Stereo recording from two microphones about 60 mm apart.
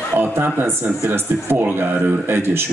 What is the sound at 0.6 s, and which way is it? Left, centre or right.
Speech, right.